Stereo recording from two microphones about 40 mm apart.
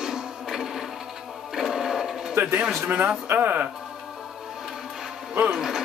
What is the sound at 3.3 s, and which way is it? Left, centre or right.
Speech, right.